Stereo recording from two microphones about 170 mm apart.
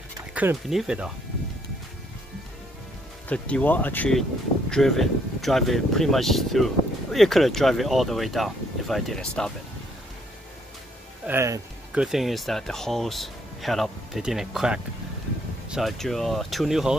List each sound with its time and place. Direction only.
0.3 s speech: 10° right (ahead or behind)
3.3 s speech: 10° left (ahead or behind)
11.2 s speech: 15° right (ahead or behind)
11.9 s speech: 5° right (ahead or behind)